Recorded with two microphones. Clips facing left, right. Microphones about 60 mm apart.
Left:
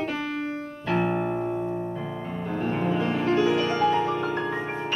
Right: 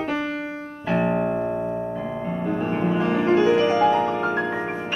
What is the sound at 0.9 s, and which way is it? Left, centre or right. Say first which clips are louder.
Piano: right 3 dB; centre.